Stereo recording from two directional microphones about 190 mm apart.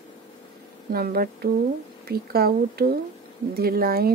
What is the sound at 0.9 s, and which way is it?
Speech, 50° right (ahead or behind).